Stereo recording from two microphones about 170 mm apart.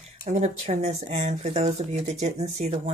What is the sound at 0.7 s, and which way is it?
Speech, 40° right (ahead or behind).